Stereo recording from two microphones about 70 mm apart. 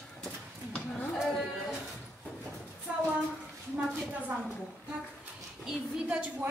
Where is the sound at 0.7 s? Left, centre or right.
Centre.